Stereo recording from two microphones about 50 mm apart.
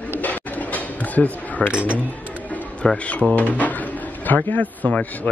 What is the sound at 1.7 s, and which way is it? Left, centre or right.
Speech, right.